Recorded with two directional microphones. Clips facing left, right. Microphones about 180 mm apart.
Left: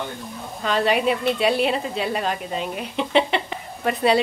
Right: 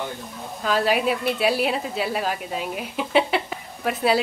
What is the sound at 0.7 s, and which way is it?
A woman's voice, 5° right (ahead or behind).